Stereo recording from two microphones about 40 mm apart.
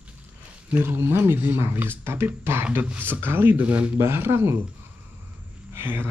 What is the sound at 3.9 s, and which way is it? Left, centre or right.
Speech, right.